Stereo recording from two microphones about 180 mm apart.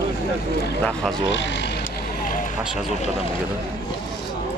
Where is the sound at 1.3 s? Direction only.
85° left.